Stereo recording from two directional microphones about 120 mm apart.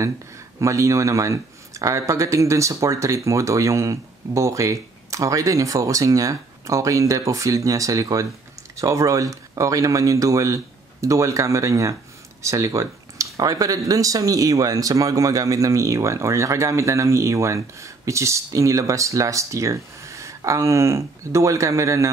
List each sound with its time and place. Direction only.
0.6 s speech: 25° right (ahead or behind)